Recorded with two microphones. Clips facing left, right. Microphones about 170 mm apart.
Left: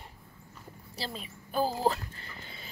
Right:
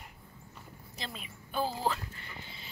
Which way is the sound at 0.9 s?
35° left (ahead or behind).